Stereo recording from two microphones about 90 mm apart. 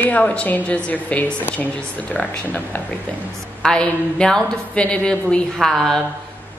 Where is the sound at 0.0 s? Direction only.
15° left (ahead or behind).